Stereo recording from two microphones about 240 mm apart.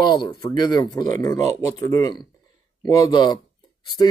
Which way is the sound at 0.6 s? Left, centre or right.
Centre.